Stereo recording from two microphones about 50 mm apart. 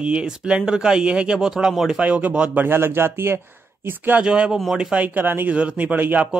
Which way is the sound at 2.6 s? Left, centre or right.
Right.